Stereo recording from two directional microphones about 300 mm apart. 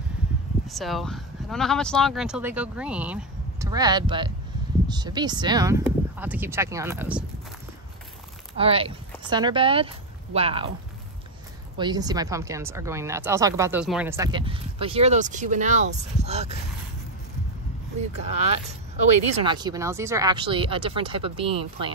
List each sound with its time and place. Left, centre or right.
0.7 s a woman's voice: centre
8.5 s speech: centre
11.7 s a woman's voice: centre
19.2 s a woman's voice: centre